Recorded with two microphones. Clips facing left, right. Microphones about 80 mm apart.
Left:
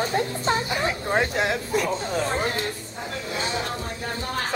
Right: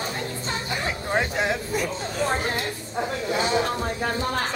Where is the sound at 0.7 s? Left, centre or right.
Centre.